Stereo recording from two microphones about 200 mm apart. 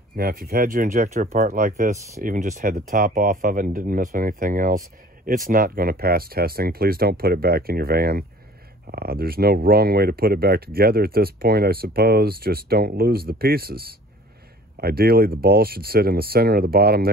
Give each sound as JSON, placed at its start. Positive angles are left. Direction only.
{"t": 0.1, "sound": "speech", "side_deg": -45}